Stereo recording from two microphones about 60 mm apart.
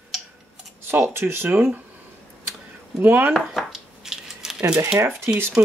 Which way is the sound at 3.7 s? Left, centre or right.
Centre.